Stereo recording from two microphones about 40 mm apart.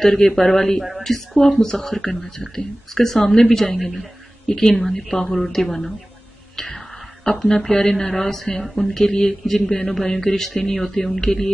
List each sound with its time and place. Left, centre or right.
0.0 s a man's voice: centre
3.7 s a man's voice: centre
6.5 s a sound: centre
7.2 s a man's voice: centre